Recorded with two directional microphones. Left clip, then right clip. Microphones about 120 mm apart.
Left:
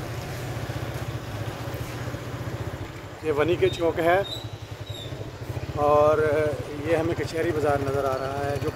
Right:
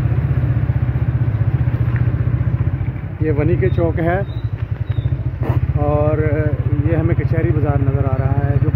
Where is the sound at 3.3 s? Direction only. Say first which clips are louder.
Right 2 dB; 35° left (ahead or behind).